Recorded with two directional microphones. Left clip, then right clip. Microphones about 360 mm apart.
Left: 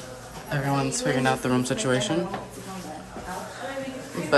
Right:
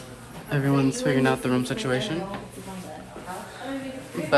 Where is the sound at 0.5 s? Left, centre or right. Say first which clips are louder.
Right 2 dB; centre.